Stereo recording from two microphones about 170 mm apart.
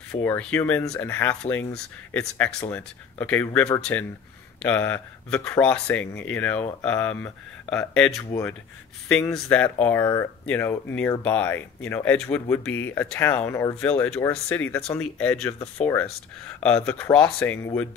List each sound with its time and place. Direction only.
0.1 s speech: 10° left (ahead or behind)
8.3 s speech: 15° left (ahead or behind)